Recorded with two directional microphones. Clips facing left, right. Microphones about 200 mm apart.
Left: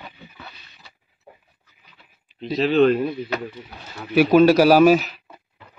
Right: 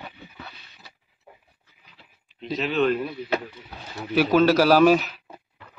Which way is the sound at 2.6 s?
35° left (ahead or behind).